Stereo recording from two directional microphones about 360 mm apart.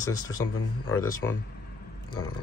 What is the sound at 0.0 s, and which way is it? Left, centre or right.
Speech, centre.